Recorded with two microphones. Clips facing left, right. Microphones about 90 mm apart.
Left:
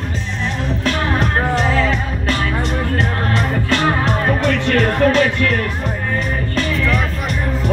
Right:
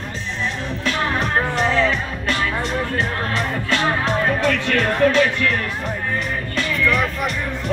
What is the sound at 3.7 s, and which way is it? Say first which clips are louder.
Music: left 2 dB; 45° left (ahead or behind).